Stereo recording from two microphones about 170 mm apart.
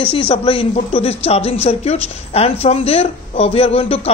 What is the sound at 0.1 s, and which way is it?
A woman's voice, 35° left (ahead or behind).